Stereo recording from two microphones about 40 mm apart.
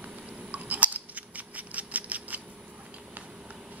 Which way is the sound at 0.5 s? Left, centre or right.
Right.